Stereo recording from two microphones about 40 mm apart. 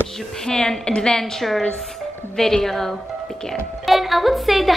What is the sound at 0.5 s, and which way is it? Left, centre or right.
Speech, centre.